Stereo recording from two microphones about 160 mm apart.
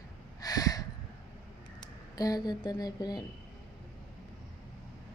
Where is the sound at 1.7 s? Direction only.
25° left (ahead or behind).